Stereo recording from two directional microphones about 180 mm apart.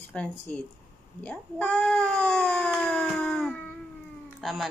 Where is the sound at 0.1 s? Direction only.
5° left (ahead or behind).